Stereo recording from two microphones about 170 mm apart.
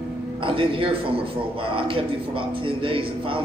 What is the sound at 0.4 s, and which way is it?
A man's voice, 30° right (ahead or behind).